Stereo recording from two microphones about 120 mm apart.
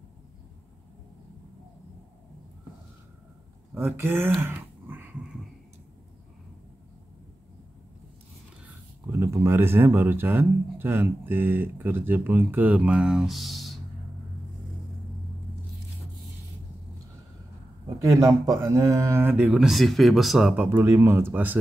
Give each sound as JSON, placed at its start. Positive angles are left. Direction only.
{"t": 3.7, "sound": "speech", "side_deg": -20}
{"t": 4.4, "sound": "a sound", "side_deg": -20}
{"t": 9.1, "sound": "speech", "side_deg": -25}
{"t": 17.8, "sound": "speech", "side_deg": -25}